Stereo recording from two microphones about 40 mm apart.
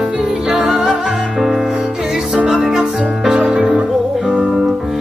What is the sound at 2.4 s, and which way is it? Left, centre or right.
Music, centre.